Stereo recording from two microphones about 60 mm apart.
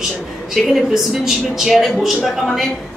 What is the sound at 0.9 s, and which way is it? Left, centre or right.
A woman's voice, centre.